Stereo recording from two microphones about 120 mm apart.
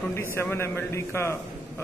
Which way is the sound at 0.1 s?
20° left (ahead or behind).